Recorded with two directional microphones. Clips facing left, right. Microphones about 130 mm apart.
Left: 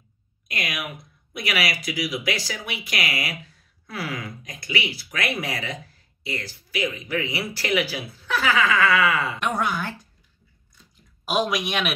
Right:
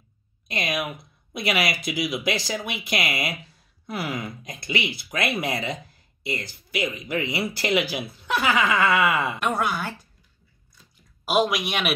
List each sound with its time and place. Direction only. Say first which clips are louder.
0.5 s speech: right 4 dB; 25° right (ahead or behind)
9.4 s speech: even; 5° right (ahead or behind)
11.2 s speech: right 2 dB; 5° right (ahead or behind)